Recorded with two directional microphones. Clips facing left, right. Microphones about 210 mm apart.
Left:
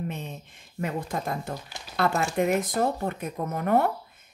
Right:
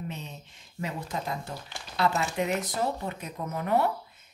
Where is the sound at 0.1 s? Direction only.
55° left (ahead or behind).